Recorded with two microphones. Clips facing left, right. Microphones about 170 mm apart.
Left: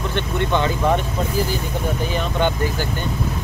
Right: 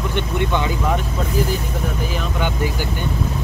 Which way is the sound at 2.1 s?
10° right (ahead or behind).